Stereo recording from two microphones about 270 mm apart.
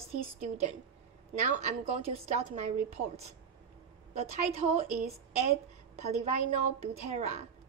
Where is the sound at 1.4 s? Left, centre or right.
Right.